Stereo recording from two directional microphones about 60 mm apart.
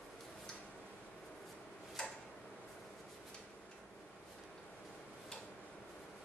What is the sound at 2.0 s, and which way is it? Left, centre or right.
Tick-tock, centre.